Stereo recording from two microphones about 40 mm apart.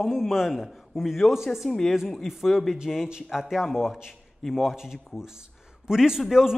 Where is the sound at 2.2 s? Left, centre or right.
Centre.